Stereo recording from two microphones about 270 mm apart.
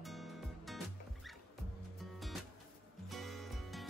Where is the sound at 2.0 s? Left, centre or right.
Centre.